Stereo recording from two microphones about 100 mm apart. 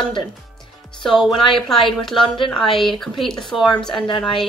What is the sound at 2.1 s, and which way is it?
Speech, 55° left (ahead or behind).